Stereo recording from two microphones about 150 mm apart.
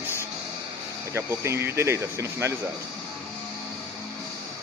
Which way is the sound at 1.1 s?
15° right (ahead or behind).